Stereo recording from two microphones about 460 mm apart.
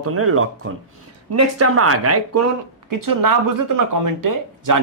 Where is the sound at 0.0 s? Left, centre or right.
Right.